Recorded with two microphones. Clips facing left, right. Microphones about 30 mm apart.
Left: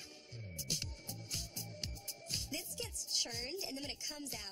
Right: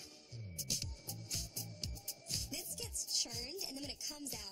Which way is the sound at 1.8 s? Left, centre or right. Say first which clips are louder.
Left 2 dB; left.